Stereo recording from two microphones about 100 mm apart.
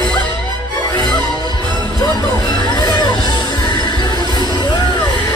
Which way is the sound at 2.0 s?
45° left (ahead or behind).